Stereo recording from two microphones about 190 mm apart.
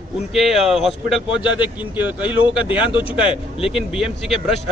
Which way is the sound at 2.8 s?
25° left (ahead or behind).